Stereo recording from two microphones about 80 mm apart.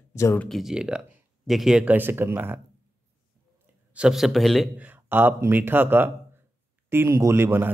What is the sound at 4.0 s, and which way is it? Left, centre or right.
Speech, centre.